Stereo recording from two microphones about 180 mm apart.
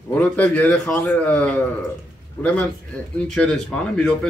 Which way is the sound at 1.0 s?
15° left (ahead or behind).